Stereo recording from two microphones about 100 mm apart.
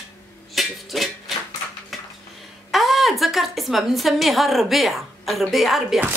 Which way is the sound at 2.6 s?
Centre (ahead or behind).